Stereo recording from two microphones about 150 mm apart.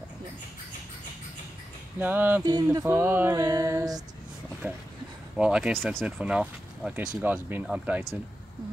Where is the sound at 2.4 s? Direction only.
25° right (ahead or behind).